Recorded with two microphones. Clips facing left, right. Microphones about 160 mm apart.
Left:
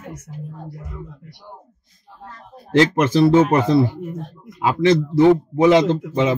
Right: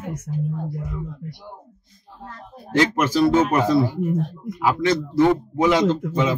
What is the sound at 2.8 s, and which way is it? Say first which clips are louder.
A man's voice: left 3 dB; 25° left (ahead or behind).